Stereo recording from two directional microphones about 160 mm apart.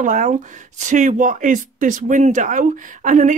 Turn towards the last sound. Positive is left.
turn(degrees=-50)  # may be behind; listen again after turning